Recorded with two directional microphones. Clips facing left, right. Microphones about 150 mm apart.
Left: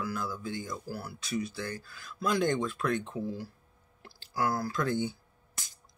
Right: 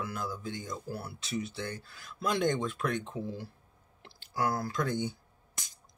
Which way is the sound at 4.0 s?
20° right (ahead or behind).